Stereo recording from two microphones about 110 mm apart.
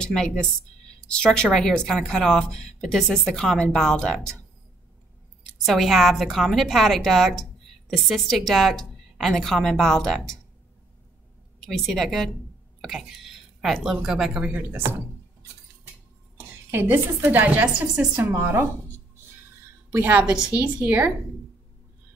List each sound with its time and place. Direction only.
0.0 s speech: 5° left (ahead or behind)
5.4 s speech: centre (ahead or behind)
11.6 s speech: 5° left (ahead or behind); by 15.0 s 15° right (ahead or behind)
16.7 s a woman's voice: 20° right (ahead or behind)
19.9 s a woman's voice: 20° right (ahead or behind)